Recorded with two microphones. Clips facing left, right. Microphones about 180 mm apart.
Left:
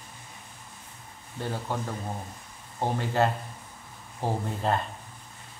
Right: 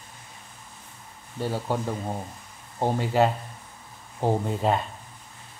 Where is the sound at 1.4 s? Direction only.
10° right (ahead or behind).